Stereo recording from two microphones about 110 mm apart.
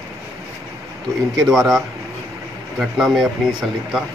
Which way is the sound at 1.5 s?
Centre (ahead or behind).